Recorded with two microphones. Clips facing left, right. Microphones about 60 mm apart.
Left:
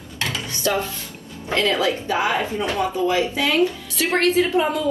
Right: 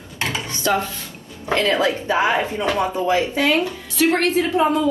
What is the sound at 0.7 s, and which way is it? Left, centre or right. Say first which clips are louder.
Speech: right 2 dB; right.